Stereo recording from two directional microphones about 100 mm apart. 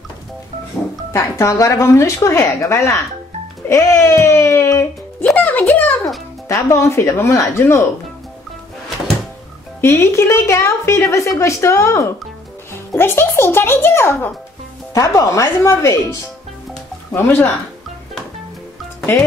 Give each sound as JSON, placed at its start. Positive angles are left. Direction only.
{"t": 1.4, "sound": "a woman's voice", "side_deg": 30}
{"t": 5.2, "sound": "music", "side_deg": 15}
{"t": 6.5, "sound": "a woman's voice", "side_deg": 30}
{"t": 9.8, "sound": "a woman's voice", "side_deg": 25}